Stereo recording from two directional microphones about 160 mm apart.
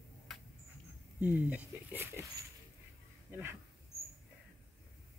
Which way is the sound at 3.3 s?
15° right (ahead or behind).